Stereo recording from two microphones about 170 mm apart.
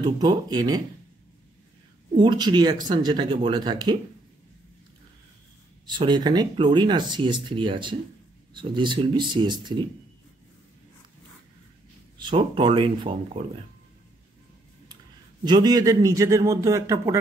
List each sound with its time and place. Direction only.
0.0 s speech: 25° right (ahead or behind)
2.1 s speech: 25° right (ahead or behind)
5.9 s speech: 25° right (ahead or behind)
12.2 s speech: 30° right (ahead or behind)
15.4 s speech: 25° right (ahead or behind)